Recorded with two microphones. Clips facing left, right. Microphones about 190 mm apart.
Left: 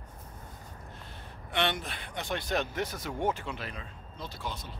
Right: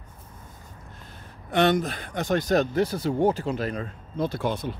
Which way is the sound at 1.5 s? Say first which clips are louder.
Right 10 dB; 40° right (ahead or behind).